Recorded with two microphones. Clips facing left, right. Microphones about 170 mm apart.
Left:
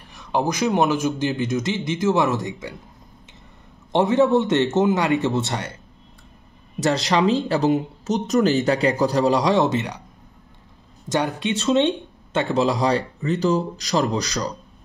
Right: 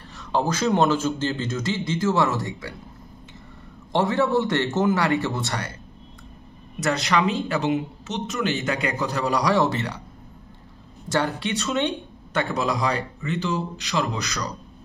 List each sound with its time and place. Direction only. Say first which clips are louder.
0.1 s a man's voice: left 1 dB; 15° left (ahead or behind)
3.9 s a man's voice: left 4 dB; 20° left (ahead or behind)
6.8 s speech: left 3 dB; 30° left (ahead or behind)
11.1 s speech: left 2 dB; 20° left (ahead or behind); by 14.5 s 35° left (ahead or behind)